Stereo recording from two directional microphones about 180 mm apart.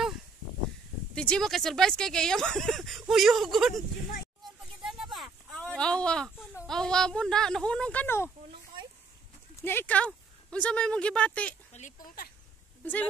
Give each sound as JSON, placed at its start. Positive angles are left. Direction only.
{"t": 1.1, "sound": "speech", "side_deg": 5}
{"t": 4.8, "sound": "a sound", "side_deg": 0}
{"t": 6.6, "sound": "speech", "side_deg": 5}
{"t": 9.6, "sound": "speech", "side_deg": 10}
{"t": 11.7, "sound": "speech", "side_deg": 45}
{"t": 12.8, "sound": "speech", "side_deg": 10}